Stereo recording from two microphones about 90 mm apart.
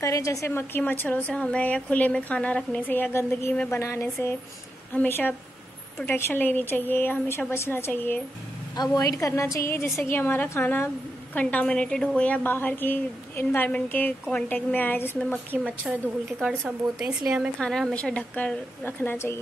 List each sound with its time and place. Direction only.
0.0 s a woman's voice: 35° left (ahead or behind); by 8.2 s 20° left (ahead or behind)
8.9 s a woman's voice: 40° left (ahead or behind); by 15.1 s 20° left (ahead or behind)
15.8 s a woman's voice: 5° right (ahead or behind)
17.6 s a woman's voice: 5° left (ahead or behind); by 19.4 s 30° left (ahead or behind)